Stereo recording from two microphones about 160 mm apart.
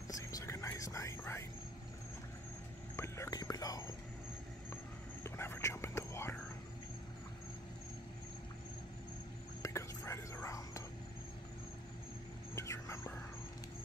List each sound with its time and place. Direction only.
0.1 s whispering: 20° left (ahead or behind)
3.0 s whispering: 20° left (ahead or behind)
5.2 s whispering: 15° left (ahead or behind)
9.6 s whispering: 15° left (ahead or behind)
12.5 s a sound: 20° left (ahead or behind)